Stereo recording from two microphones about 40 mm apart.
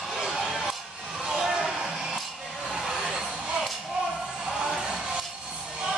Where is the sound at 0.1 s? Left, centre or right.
Centre.